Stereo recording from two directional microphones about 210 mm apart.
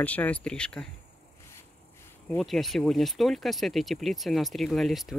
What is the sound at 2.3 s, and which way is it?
Speech, centre (ahead or behind).